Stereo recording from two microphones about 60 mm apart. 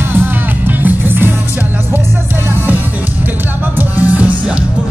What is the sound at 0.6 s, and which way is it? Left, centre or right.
Music, right.